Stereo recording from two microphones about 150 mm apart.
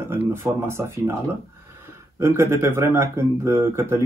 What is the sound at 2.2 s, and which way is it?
Speech, 15° right (ahead or behind).